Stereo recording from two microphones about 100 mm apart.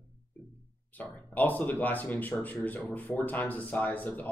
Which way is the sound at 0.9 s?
15° left (ahead or behind).